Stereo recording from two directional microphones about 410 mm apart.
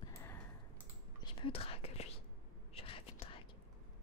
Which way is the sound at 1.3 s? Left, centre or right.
Centre.